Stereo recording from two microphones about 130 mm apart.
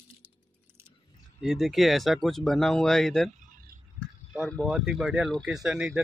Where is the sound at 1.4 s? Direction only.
Centre (ahead or behind).